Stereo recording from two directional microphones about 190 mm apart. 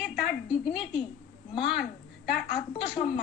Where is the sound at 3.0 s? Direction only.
30° left (ahead or behind).